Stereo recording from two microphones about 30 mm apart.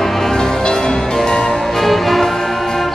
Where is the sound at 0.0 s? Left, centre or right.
Centre.